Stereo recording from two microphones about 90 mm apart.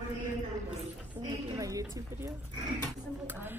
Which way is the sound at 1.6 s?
40° right (ahead or behind).